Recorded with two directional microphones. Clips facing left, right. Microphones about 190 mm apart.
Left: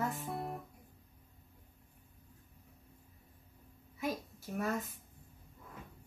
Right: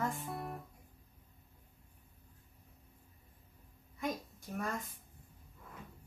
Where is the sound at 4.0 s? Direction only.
5° left (ahead or behind).